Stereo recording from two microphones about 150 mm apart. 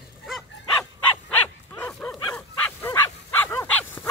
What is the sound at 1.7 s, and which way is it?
Dog, 15° left (ahead or behind).